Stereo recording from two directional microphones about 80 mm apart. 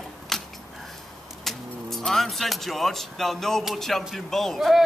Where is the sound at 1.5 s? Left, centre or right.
Centre.